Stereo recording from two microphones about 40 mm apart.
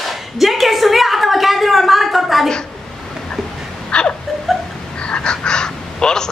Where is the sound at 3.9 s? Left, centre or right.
Left.